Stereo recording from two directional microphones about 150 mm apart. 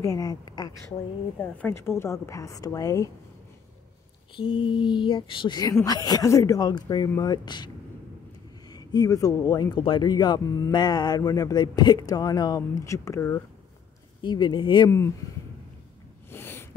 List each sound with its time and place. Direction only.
0.0 s speech: 25° left (ahead or behind)
1.6 s speech: 15° left (ahead or behind)
4.4 s speech: 35° left (ahead or behind); by 13.4 s 20° left (ahead or behind)
14.2 s speech: 30° left (ahead or behind)
16.3 s snort: 15° left (ahead or behind)